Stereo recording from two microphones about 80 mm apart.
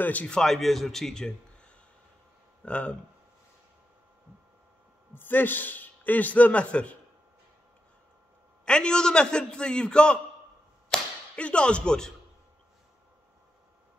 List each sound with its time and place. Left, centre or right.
0.0 s a man's voice: centre
0.4 s a man's voice: centre
5.1 s a man's voice: left
8.6 s a man's voice: centre
10.9 s a sound: centre